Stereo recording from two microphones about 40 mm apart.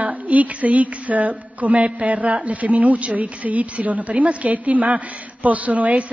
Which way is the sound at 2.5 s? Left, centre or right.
Right.